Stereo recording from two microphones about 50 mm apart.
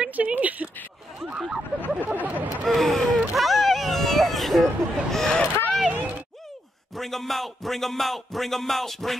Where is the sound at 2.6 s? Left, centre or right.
Centre.